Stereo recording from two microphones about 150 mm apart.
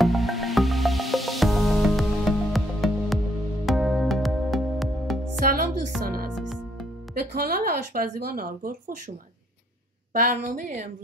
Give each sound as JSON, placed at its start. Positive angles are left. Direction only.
{"t": 0.0, "sound": "music", "side_deg": 0}
{"t": 5.4, "sound": "music", "side_deg": -75}
{"t": 7.2, "sound": "speech", "side_deg": -90}
{"t": 10.1, "sound": "a woman's voice", "side_deg": -55}